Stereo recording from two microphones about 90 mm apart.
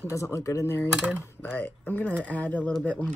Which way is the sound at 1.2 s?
25° left (ahead or behind).